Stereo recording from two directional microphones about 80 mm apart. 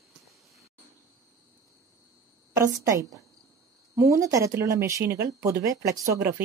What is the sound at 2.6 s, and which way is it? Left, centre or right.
Speech, right.